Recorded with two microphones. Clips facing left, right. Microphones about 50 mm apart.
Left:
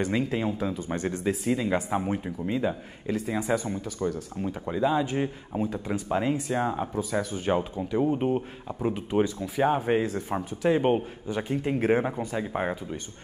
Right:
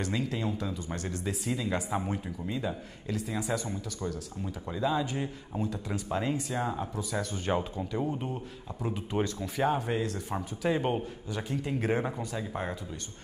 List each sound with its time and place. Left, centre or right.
0.2 s speech: left
7.0 s speech: centre
8.1 s speech: left
8.8 s speech: centre
9.9 s speech: left
10.3 s speech: left